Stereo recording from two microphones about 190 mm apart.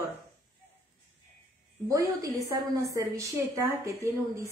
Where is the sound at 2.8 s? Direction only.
15° right (ahead or behind).